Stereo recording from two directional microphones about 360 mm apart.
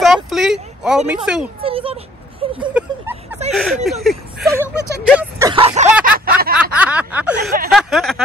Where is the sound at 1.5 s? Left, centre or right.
Centre.